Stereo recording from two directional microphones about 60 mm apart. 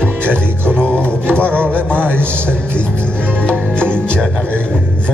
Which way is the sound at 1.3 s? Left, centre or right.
Centre.